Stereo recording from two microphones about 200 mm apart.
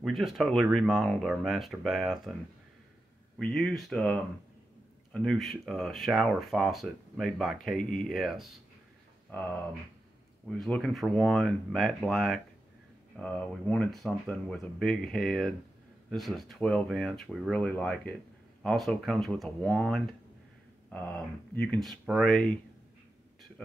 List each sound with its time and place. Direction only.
0.0 s speech: centre (ahead or behind)
3.3 s speech: 5° left (ahead or behind)
10.5 s speech: 5° left (ahead or behind)